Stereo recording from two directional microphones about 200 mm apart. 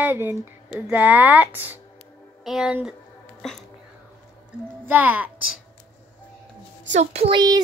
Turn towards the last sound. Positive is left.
turn(degrees=-20)  # may be behind; listen again after turning